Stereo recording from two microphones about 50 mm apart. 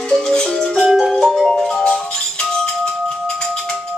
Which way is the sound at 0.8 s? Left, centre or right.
Centre.